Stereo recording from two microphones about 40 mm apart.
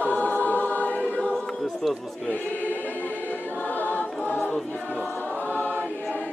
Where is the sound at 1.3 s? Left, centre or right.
Centre.